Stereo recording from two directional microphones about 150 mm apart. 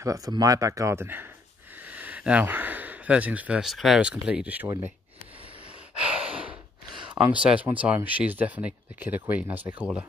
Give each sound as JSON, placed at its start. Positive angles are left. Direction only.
{"t": 0.0, "sound": "speech", "side_deg": -25}
{"t": 4.6, "sound": "speech", "side_deg": -20}
{"t": 5.9, "sound": "gasp", "side_deg": -5}
{"t": 7.2, "sound": "speech", "side_deg": -10}